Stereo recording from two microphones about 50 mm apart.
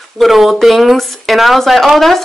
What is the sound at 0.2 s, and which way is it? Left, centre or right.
Speech, centre.